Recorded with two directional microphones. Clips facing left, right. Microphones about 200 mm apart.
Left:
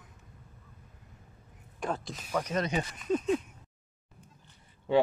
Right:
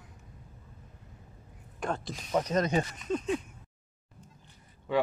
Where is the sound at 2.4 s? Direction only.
40° right (ahead or behind).